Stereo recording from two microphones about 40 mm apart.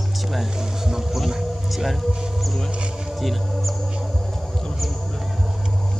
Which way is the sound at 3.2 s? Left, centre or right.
Centre.